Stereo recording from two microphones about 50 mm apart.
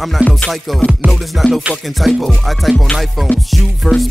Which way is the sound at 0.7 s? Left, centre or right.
Centre.